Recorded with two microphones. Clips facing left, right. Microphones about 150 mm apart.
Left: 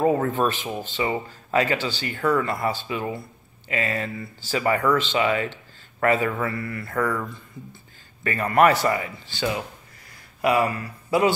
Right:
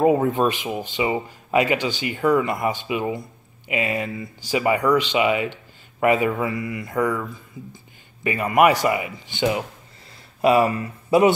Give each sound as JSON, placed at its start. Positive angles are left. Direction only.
{"t": 0.0, "sound": "speech", "side_deg": -20}